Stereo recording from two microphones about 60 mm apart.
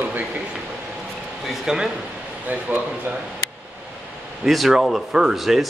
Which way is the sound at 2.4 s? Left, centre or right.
Right.